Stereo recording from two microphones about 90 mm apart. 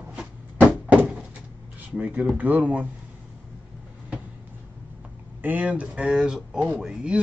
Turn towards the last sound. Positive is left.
turn(degrees=-10)  # may be behind; listen again after turning